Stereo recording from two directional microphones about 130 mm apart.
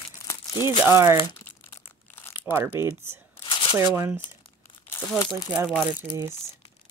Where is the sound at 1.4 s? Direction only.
15° left (ahead or behind).